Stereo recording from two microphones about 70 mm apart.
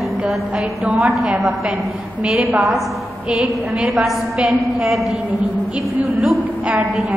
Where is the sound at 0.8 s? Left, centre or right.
Centre.